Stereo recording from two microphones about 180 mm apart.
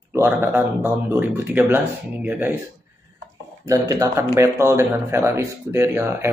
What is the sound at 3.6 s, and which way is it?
Speech, 20° right (ahead or behind).